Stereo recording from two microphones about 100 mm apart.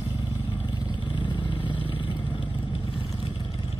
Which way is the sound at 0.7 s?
55° left (ahead or behind).